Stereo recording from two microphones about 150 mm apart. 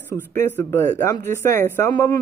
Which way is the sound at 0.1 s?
15° left (ahead or behind).